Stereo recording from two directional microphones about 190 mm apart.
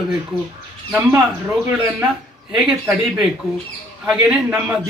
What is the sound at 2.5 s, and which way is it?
Speech, 5° right (ahead or behind).